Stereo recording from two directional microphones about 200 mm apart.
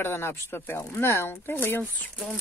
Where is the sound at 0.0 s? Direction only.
10° left (ahead or behind).